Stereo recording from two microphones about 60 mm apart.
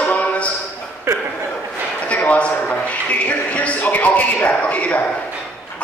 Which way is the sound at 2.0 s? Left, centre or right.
Left.